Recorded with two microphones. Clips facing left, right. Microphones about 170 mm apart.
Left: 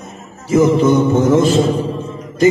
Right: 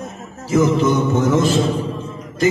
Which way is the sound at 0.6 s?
25° left (ahead or behind).